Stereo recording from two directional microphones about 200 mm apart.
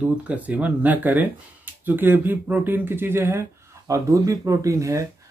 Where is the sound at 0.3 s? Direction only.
5° right (ahead or behind).